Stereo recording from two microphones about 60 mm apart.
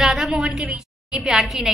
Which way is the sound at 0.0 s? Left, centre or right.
Centre.